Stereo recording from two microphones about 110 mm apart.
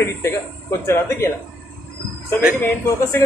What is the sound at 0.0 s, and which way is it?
A man's voice, 25° left (ahead or behind).